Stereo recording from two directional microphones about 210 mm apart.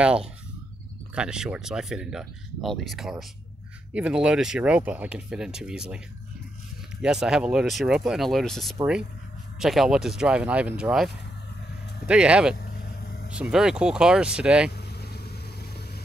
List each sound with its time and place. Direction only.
0.0 s speech: 5° right (ahead or behind)
7.0 s speech: 5° right (ahead or behind)
12.1 s speech: 5° right (ahead or behind)
12.5 s vehicle: 50° left (ahead or behind)
13.3 s speech: 5° right (ahead or behind)
14.9 s vehicle: 50° left (ahead or behind)